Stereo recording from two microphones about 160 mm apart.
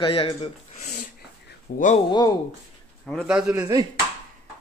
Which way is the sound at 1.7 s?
65° left (ahead or behind).